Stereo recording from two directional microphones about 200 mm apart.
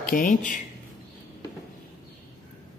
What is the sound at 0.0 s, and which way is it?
Mantra, 45° left (ahead or behind).